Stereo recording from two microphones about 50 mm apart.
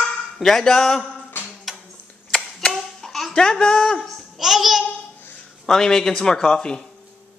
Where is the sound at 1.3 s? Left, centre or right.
Left.